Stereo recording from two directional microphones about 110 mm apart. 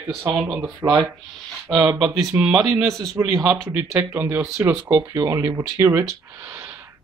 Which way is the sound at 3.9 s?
20° right (ahead or behind).